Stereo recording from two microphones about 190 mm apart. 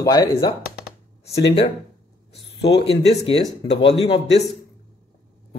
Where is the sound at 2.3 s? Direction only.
65° left (ahead or behind).